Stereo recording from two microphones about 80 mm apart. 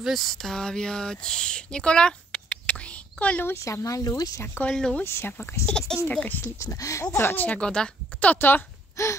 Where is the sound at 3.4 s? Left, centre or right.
Left.